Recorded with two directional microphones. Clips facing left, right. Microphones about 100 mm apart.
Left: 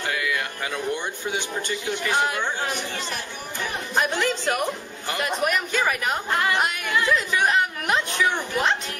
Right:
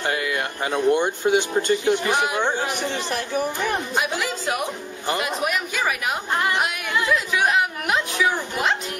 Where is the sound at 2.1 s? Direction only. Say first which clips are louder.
Right 2 dB; 20° right (ahead or behind).